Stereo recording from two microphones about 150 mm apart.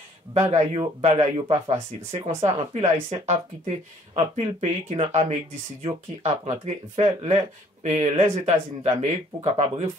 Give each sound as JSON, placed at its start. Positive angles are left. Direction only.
{"t": 0.3, "sound": "speech", "side_deg": -40}